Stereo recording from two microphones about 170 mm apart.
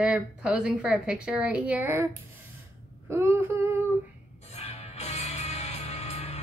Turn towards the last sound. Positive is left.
turn(degrees=40)  # may be behind; listen again after turning